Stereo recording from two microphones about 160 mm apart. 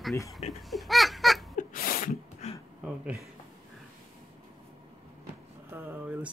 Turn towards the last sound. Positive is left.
turn(degrees=-10)  # may be behind; listen again after turning